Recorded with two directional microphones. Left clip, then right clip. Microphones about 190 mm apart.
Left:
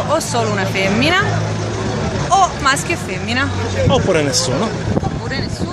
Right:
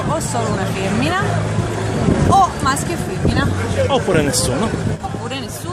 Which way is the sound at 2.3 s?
30° left (ahead or behind).